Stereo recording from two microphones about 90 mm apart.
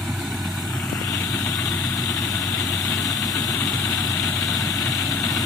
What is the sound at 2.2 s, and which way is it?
Vehicle, 45° left (ahead or behind).